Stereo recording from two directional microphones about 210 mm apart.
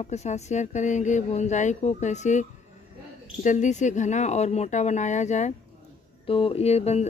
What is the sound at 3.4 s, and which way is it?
Speech, 35° left (ahead or behind).